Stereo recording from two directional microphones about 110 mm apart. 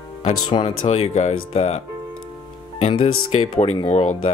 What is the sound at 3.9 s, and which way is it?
Speech, 85° left.